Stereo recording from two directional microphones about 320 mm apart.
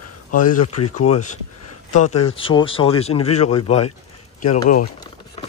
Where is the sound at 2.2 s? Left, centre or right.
Centre.